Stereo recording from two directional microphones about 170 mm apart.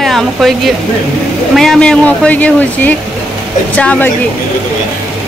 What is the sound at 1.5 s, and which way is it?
Speech, centre (ahead or behind).